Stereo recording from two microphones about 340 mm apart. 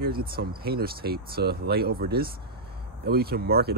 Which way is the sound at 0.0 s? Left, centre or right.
Right.